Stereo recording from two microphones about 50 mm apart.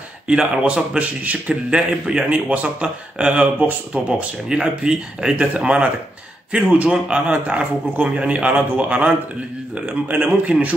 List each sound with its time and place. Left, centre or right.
0.3 s speech: centre
0.9 s a man's voice: right
1.5 s a man's voice: centre
2.2 s speech: right